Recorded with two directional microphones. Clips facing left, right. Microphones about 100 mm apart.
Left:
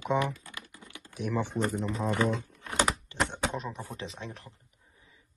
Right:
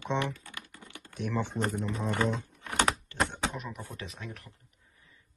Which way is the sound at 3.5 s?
30° left (ahead or behind).